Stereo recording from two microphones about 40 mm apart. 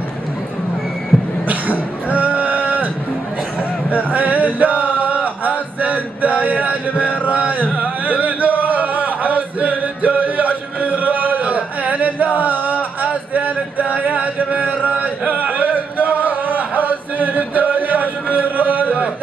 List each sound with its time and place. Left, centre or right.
1.1 s a sound: centre
1.5 s music: right
3.9 s male singing: right
7.2 s carnatic music: right
7.7 s music: right
13.3 s a sound: right